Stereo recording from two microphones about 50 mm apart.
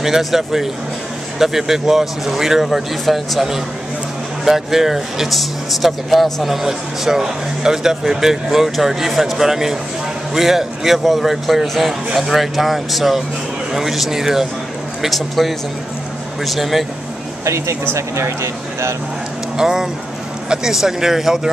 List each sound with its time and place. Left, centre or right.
0.0 s a man's voice: centre
17.5 s speech: right
19.5 s speech: centre